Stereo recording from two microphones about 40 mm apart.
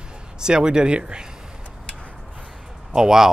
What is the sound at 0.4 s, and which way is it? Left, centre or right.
Speech, right.